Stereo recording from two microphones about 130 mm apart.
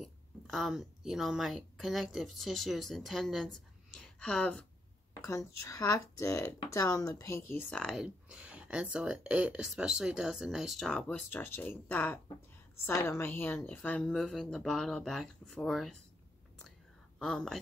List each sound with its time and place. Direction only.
0.0 s a woman's voice: centre (ahead or behind)
5.7 s speech: 20° left (ahead or behind)
7.8 s speech: 5° right (ahead or behind)
17.2 s speech: 5° left (ahead or behind)